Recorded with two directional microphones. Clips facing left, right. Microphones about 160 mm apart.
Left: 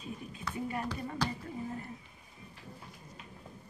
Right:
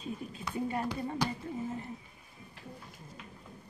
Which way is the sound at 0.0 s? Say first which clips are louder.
Right 2 dB; 30° right (ahead or behind).